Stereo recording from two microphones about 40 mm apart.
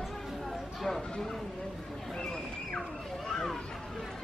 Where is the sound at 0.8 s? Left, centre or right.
Centre.